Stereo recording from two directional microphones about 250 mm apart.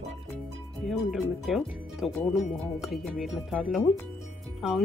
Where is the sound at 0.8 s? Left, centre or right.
Centre.